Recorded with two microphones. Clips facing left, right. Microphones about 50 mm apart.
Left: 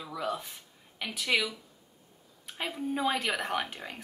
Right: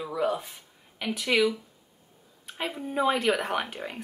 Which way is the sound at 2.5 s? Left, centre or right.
Centre.